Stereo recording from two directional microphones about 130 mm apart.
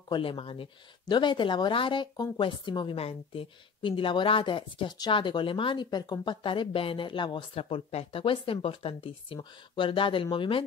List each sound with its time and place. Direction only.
0.1 s speech: 40° left (ahead or behind)